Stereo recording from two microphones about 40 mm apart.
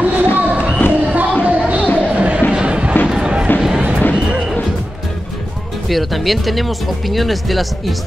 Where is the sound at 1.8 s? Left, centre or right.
Left.